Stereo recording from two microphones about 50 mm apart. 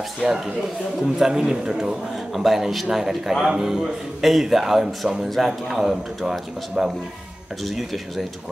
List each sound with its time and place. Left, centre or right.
0.2 s speech: centre